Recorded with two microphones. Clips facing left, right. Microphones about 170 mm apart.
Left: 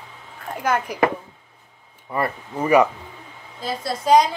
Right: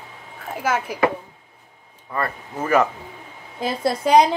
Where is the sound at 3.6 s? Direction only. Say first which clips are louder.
Right 5 dB; 55° right (ahead or behind).